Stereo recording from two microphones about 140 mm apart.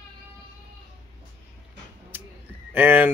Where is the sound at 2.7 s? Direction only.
15° right (ahead or behind).